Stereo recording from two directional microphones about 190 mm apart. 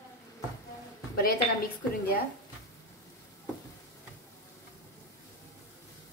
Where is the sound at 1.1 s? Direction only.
55° left (ahead or behind).